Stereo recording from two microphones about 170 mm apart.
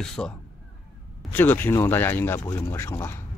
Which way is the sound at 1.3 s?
10° left (ahead or behind).